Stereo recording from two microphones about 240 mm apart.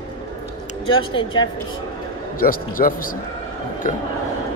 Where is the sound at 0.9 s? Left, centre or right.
Left.